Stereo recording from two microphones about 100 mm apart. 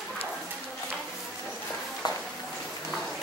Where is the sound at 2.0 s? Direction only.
45° left (ahead or behind).